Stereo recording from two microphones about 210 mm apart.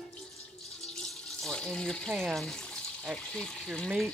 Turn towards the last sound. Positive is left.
turn(degrees=5)  # may be behind; listen again after turning